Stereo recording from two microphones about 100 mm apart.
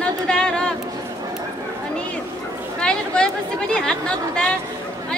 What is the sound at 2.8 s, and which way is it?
Speech, 10° left (ahead or behind).